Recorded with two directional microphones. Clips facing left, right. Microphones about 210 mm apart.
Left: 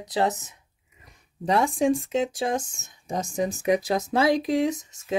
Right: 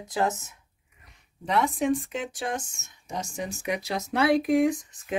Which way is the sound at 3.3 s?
40° left (ahead or behind).